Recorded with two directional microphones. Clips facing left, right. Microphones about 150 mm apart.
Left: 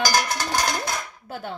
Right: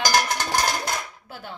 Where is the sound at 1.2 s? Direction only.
45° left (ahead or behind).